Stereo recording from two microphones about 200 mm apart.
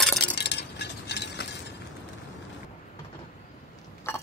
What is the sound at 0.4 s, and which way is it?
Chink, 55° left (ahead or behind).